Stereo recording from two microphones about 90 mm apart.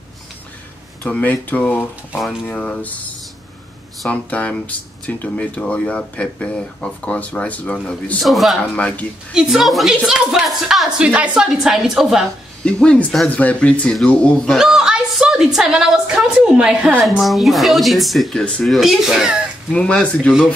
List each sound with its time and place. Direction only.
1.0 s speech: 15° left (ahead or behind)
4.1 s speech: 15° left (ahead or behind)
8.2 s a woman's voice: centre (ahead or behind)
8.7 s speech: 15° left (ahead or behind)
9.3 s a woman's voice: 5° right (ahead or behind)
11.0 s a woman's voice: 15° right (ahead or behind)
12.6 s speech: 10° left (ahead or behind)
13.3 s speech: 15° left (ahead or behind)
14.6 s a woman's voice: 5° right (ahead or behind)
17.2 s a woman's voice: centre (ahead or behind)
19.7 s speech: 10° left (ahead or behind)